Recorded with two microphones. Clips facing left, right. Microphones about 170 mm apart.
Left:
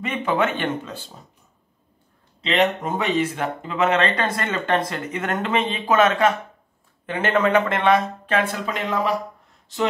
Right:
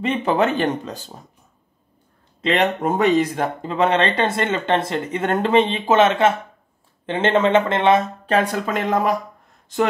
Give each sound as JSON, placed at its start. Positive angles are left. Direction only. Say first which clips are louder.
{"t": 0.0, "sound": "speech", "louder": "right 3 dB", "side_deg": -35}
{"t": 2.4, "sound": "speech", "louder": "right 2 dB", "side_deg": -45}
{"t": 8.3, "sound": "speech", "louder": "right 4 dB", "side_deg": -40}